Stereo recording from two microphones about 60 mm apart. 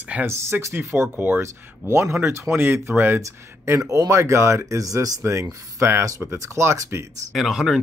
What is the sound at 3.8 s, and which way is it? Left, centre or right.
Speech, right.